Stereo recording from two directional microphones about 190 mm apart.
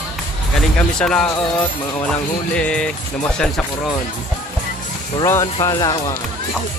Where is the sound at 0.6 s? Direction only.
5° left (ahead or behind).